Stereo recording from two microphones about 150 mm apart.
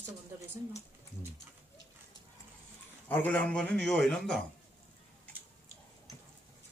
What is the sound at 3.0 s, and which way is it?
A man's voice, 10° left (ahead or behind).